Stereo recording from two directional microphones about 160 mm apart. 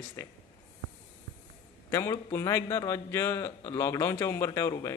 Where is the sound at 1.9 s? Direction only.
15° left (ahead or behind).